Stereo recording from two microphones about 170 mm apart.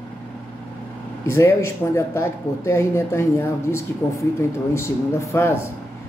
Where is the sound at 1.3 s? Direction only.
15° left (ahead or behind).